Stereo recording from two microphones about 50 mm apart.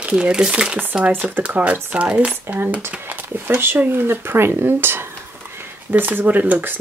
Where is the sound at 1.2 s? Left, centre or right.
Right.